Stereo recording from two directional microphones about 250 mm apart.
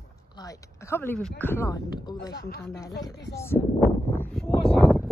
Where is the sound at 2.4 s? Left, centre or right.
Left.